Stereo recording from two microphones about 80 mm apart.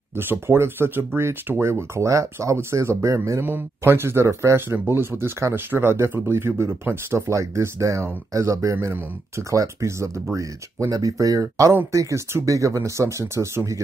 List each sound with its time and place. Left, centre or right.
0.1 s speech: right
3.4 s speech: right